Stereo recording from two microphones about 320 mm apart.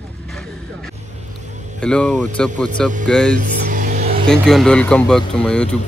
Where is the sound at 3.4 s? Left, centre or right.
Right.